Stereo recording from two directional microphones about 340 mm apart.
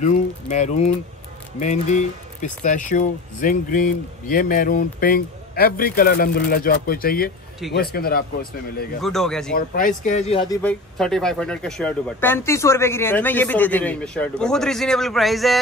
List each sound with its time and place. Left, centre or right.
0.0 s speech: left
9.0 s speech: centre
9.6 s speech: left; by 15.6 s centre